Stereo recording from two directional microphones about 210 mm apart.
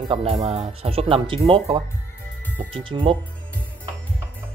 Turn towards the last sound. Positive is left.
turn(degrees=-25)  # may be behind; listen again after turning